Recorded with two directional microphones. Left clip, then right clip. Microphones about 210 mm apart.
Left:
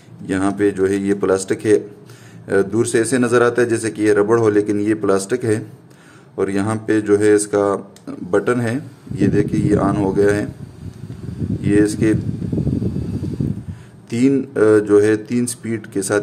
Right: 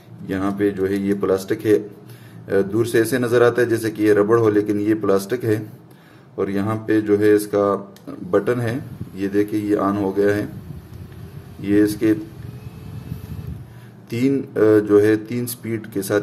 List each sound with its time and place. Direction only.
0.3 s speech: 15° left (ahead or behind)
11.6 s speech: 10° left (ahead or behind)
14.1 s speech: 10° left (ahead or behind)